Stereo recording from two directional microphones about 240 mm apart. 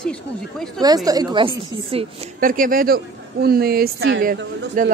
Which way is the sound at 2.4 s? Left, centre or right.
Right.